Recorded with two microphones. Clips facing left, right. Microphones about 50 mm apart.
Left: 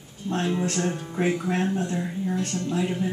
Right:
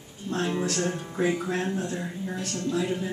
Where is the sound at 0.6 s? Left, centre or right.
Left.